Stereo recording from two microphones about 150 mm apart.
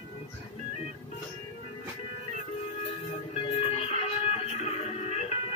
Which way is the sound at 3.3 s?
45° left (ahead or behind).